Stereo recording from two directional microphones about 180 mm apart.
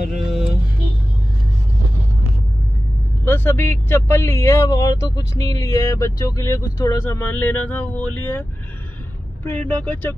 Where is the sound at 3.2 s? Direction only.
15° left (ahead or behind).